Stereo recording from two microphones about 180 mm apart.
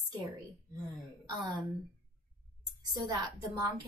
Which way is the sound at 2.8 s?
20° right (ahead or behind).